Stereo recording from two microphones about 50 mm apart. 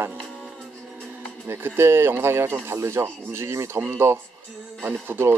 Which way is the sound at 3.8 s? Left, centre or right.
Right.